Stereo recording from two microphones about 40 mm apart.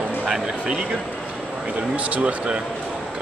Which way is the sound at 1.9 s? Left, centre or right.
Right.